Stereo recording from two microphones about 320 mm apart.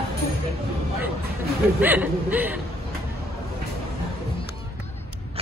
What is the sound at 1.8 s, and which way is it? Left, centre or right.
Speech, centre.